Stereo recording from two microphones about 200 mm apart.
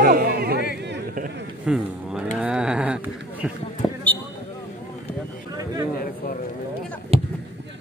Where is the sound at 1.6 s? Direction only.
5° right (ahead or behind).